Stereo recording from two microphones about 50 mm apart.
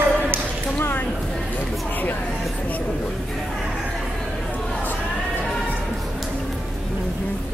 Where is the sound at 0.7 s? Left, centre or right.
Left.